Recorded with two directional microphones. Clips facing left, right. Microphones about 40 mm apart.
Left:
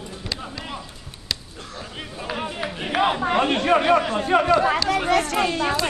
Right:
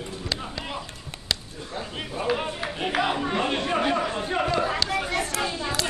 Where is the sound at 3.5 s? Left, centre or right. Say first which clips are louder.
Left 6 dB; left.